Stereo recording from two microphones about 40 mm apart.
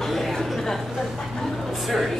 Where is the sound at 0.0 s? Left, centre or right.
Centre.